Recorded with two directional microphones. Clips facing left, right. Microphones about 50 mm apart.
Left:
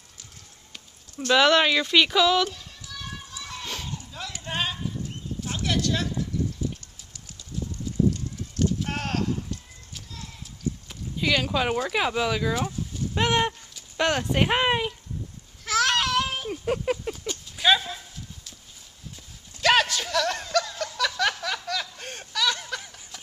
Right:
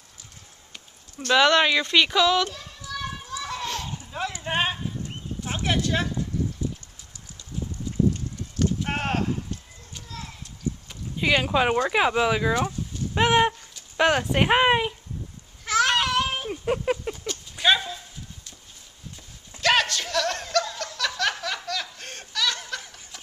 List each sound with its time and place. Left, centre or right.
1.3 s speech: centre
4.4 s clip-clop: right
8.8 s clip-clop: right
9.9 s clip-clop: centre
11.1 s speech: centre
12.5 s a sound: centre
13.1 s speech: centre
15.6 s a sound: centre
17.6 s dog: centre
19.6 s a sound: centre
20.5 s snicker: centre
21.2 s a sound: centre
21.6 s snicker: centre